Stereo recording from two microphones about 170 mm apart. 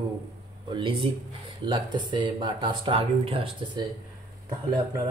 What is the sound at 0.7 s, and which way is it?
Speech, 25° right (ahead or behind).